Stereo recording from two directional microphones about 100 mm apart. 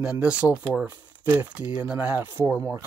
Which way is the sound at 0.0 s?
10° right (ahead or behind).